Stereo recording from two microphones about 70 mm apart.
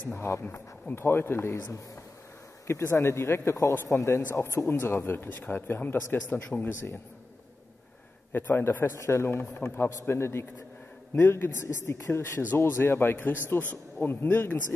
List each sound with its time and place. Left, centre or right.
0.0 s speech: left
2.8 s speech: left
8.3 s speech: left